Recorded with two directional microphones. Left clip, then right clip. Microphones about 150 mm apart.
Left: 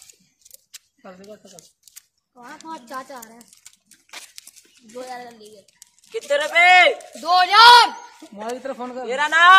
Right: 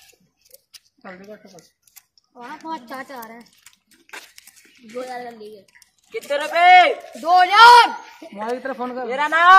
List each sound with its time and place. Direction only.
1.4 s speech: 40° left (ahead or behind)
2.3 s speech: 45° right (ahead or behind)
4.9 s speech: 45° right (ahead or behind)
6.1 s speech: 45° left (ahead or behind)
7.2 s speech: 25° left (ahead or behind)
8.4 s speech: 70° left (ahead or behind)
9.0 s speech: 45° left (ahead or behind)